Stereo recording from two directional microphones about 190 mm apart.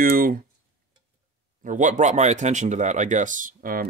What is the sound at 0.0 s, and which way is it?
Speech, 50° right (ahead or behind).